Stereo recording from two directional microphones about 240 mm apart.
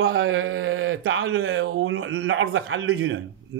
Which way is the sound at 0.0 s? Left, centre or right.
Right.